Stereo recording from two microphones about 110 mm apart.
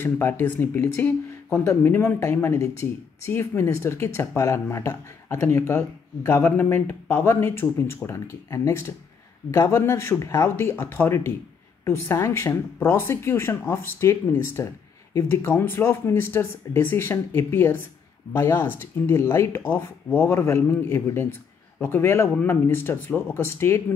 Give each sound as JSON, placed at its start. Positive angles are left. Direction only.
{"t": 0.0, "sound": "speech", "side_deg": 20}